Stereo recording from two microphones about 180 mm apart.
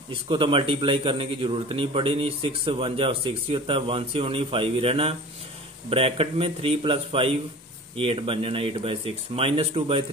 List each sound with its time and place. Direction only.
0.1 s a man's voice: 30° right (ahead or behind)